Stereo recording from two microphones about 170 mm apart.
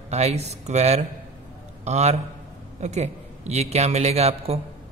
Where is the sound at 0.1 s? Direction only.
40° right (ahead or behind).